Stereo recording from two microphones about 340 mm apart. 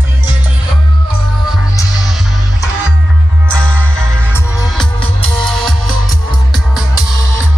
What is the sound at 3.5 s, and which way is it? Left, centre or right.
Music, centre.